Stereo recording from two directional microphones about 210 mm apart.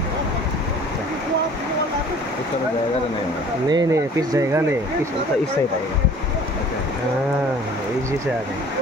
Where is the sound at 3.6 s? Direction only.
20° right (ahead or behind).